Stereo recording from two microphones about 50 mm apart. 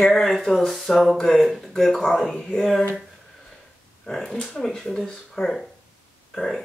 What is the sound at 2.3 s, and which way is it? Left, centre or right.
Speech, centre.